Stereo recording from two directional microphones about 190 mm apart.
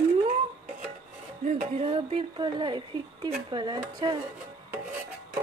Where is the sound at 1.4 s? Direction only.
30° right (ahead or behind).